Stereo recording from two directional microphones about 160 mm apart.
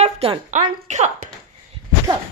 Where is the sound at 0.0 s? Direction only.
40° right (ahead or behind).